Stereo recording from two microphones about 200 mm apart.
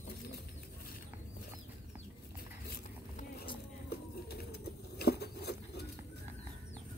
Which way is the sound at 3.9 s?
55° left (ahead or behind).